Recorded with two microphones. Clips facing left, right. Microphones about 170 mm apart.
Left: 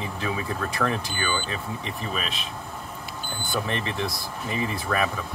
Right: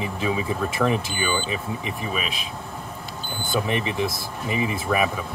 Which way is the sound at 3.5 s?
15° right (ahead or behind).